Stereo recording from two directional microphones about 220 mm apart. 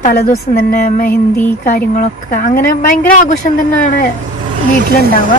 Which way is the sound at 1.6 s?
40° left (ahead or behind).